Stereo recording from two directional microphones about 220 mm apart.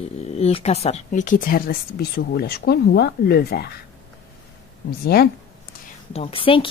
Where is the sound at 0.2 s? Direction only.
25° left (ahead or behind); by 3.7 s 45° left (ahead or behind).